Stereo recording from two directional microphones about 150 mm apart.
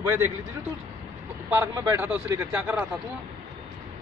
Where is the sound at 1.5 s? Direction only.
20° right (ahead or behind).